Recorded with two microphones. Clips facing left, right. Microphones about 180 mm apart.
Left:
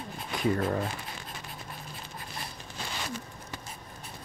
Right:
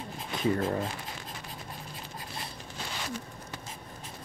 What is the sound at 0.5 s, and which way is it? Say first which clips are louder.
Speech: even; 25° right (ahead or behind).